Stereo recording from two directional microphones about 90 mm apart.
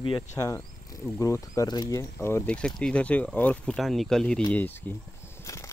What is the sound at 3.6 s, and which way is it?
Speech, 5° left (ahead or behind).